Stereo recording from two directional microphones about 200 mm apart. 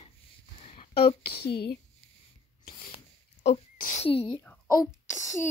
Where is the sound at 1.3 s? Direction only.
55° left (ahead or behind).